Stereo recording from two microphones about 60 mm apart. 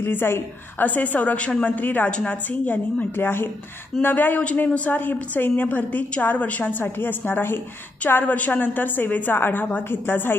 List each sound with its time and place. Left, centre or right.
0.0 s a woman's voice: left
6.8 s a woman's voice: left